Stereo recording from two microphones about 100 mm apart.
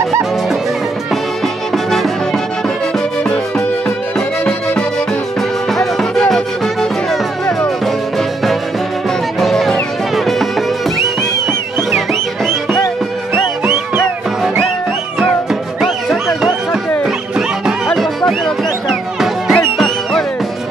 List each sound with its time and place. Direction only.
5.8 s music: 5° left (ahead or behind)
9.4 s music: centre (ahead or behind)
11.9 s music: centre (ahead or behind)
13.3 s music: 25° right (ahead or behind)
15.8 s music: centre (ahead or behind)
17.8 s music: 5° left (ahead or behind)
19.5 s music: 10° left (ahead or behind)